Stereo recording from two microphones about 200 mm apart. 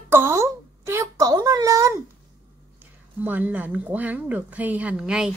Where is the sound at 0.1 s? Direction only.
15° right (ahead or behind).